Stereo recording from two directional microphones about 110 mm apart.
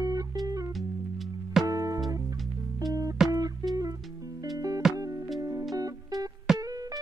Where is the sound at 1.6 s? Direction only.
35° right (ahead or behind).